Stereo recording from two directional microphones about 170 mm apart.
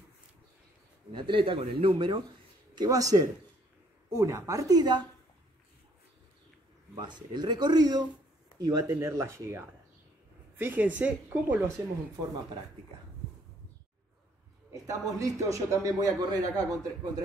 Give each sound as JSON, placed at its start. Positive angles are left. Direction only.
{"t": 1.1, "sound": "a man's voice", "side_deg": -30}
{"t": 7.0, "sound": "a man's voice", "side_deg": -25}
{"t": 14.7, "sound": "a man's voice", "side_deg": -20}